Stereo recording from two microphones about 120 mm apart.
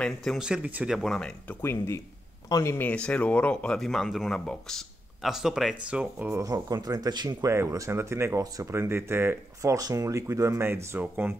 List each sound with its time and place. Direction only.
0.0 s speech: centre (ahead or behind)
0.9 s speech: 5° left (ahead or behind)
1.6 s speech: 20° left (ahead or behind)
2.9 s speech: 10° left (ahead or behind); by 6.3 s 10° right (ahead or behind)
6.3 s speech: 30° right (ahead or behind)
7.4 s speech: 25° right (ahead or behind)